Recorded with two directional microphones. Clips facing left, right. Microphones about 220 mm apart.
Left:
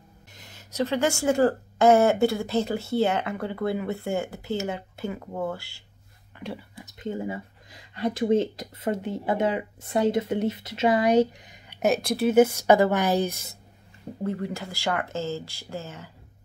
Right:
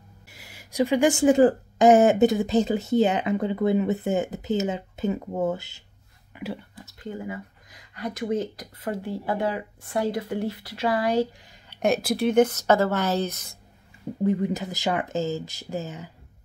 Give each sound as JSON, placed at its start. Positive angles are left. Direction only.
{"t": 0.3, "sound": "speech", "side_deg": -10}
{"t": 6.3, "sound": "speech", "side_deg": -5}
{"t": 6.8, "sound": "speech", "side_deg": 20}
{"t": 11.8, "sound": "speech", "side_deg": 0}
{"t": 14.2, "sound": "speech", "side_deg": -15}